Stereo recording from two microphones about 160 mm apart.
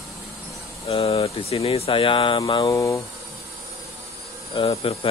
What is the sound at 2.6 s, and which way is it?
Speech, 20° left (ahead or behind).